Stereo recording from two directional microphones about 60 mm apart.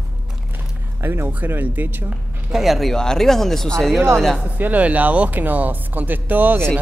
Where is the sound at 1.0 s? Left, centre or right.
Right.